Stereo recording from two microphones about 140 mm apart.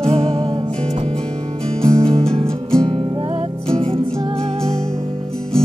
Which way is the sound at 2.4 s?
5° left (ahead or behind).